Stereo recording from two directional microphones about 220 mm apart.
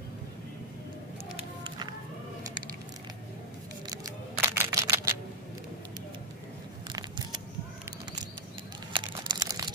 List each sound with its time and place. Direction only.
3.9 s camera: 15° right (ahead or behind)
6.9 s a sound: 20° right (ahead or behind)
8.9 s crumpling: 20° right (ahead or behind)